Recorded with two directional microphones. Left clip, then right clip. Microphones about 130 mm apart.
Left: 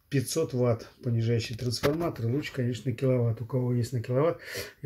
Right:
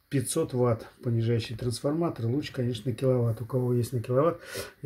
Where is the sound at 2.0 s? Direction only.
15° right (ahead or behind).